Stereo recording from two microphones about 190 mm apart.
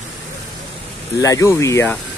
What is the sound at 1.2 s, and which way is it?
Speech, 15° left (ahead or behind).